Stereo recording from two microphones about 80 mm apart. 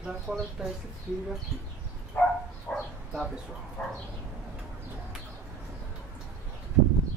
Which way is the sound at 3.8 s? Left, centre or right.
Left.